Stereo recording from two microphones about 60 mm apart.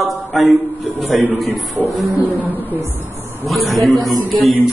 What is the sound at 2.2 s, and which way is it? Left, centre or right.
Speech, left.